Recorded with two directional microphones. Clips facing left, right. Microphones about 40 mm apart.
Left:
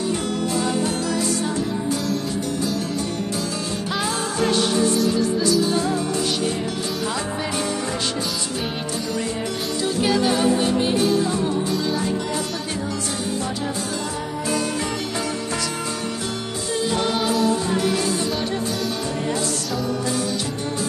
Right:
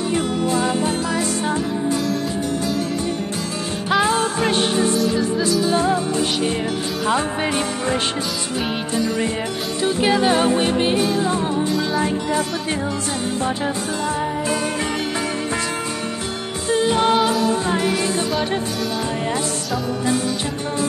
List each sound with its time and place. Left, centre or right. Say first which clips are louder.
0.1 s music: right 3 dB; right
4.0 s music: right 2 dB; right
5.7 s music: right 3 dB; right
8.9 s music: right 6 dB; right
16.7 s music: right 6 dB; right